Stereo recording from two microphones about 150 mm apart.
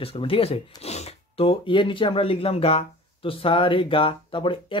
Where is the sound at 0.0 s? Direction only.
40° left (ahead or behind).